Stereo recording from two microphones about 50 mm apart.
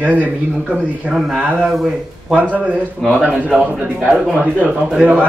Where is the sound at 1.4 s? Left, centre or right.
Right.